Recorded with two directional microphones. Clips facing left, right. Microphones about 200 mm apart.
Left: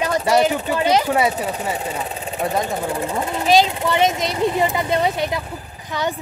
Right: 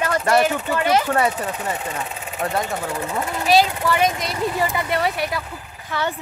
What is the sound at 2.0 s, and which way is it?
Speech, 35° left (ahead or behind).